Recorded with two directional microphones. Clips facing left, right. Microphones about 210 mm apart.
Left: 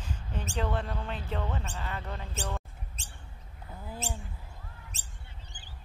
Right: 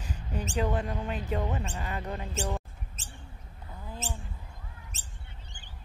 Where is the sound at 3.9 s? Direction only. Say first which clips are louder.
Left 1 dB; centre (ahead or behind).